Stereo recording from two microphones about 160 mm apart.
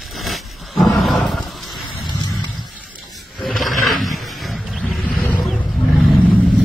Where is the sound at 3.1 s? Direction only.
Centre (ahead or behind).